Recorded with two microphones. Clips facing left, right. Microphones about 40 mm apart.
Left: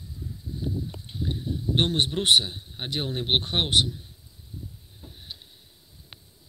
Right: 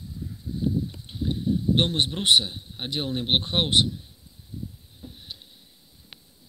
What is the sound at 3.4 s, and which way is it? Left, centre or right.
Speech, right.